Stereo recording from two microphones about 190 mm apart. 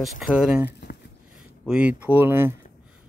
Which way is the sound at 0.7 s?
60° left (ahead or behind).